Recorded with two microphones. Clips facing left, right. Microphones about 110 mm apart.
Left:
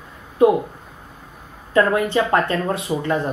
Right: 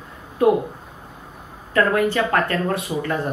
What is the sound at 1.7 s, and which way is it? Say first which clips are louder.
Speech: left 1 dB; 20° left (ahead or behind).